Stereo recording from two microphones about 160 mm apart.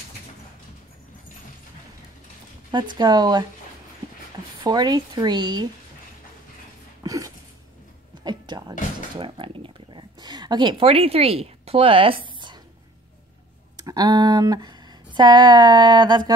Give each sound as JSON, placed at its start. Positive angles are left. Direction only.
{"t": 2.7, "sound": "speech", "side_deg": -30}
{"t": 4.6, "sound": "speech", "side_deg": -25}
{"t": 7.0, "sound": "a sound", "side_deg": -20}
{"t": 13.7, "sound": "speech", "side_deg": -25}